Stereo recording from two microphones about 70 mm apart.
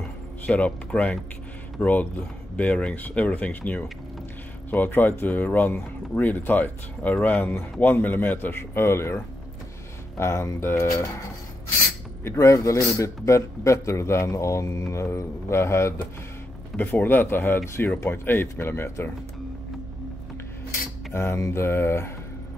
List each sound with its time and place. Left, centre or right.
0.5 s speech: centre; by 10.9 s left
12.3 s a man's voice: left
16.7 s speech: left
21.1 s speech: left